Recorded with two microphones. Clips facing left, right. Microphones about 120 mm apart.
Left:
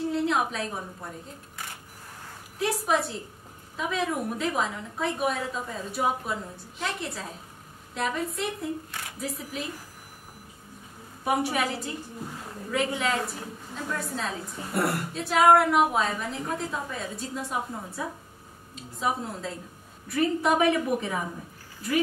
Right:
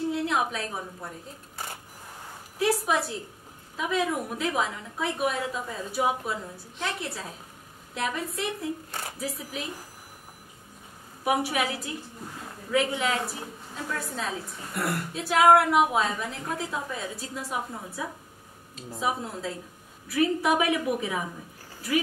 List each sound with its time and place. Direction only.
0.1 s a sound: centre (ahead or behind)
2.6 s a woman's voice: centre (ahead or behind)
11.2 s a woman's voice: 5° right (ahead or behind)